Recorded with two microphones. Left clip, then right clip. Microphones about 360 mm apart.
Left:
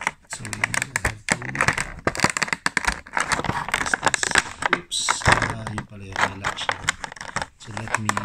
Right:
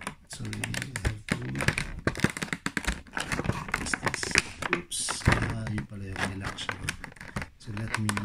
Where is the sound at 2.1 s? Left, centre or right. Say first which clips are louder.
Left 9 dB; centre.